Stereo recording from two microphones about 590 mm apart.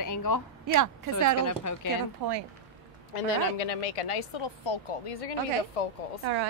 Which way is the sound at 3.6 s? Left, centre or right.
Left.